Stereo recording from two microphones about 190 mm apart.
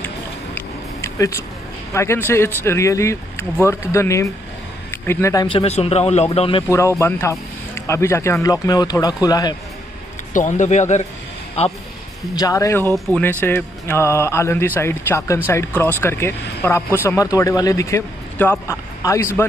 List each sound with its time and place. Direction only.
0.6 s a sound: 15° left (ahead or behind)
2.0 s speech: 15° left (ahead or behind); by 6.6 s 30° left (ahead or behind)
7.0 s speech: 15° left (ahead or behind)
10.3 s speech: 40° left (ahead or behind)
12.4 s speech: 20° left (ahead or behind)
12.9 s speech: centre (ahead or behind)
13.2 s speech: 10° left (ahead or behind)